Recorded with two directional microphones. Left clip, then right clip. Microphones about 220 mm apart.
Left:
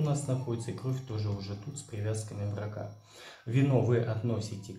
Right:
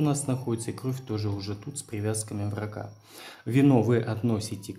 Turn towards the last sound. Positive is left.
turn(degrees=-50)  # may be behind; listen again after turning